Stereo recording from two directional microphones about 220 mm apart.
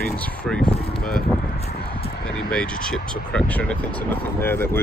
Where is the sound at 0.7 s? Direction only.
25° left (ahead or behind).